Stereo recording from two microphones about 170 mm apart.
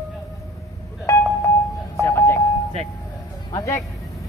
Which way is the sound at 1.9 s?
15° left (ahead or behind).